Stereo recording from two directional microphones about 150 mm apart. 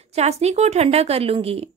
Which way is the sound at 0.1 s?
45° right (ahead or behind).